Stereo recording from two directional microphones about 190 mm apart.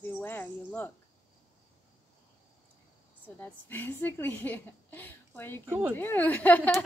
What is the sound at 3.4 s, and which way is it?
A woman's voice, 10° left (ahead or behind).